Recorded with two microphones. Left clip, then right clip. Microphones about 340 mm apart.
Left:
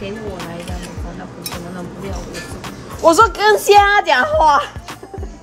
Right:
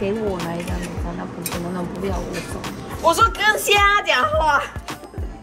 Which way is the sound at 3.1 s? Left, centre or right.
Left.